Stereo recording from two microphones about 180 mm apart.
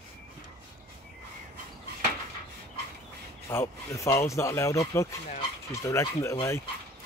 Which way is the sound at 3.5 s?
15° left (ahead or behind).